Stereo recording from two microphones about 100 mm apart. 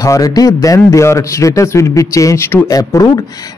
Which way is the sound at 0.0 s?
35° left (ahead or behind).